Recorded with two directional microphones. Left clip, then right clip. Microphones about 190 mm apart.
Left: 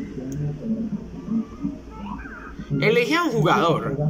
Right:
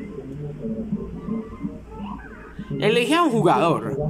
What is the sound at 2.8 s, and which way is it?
Speech, 20° right (ahead or behind).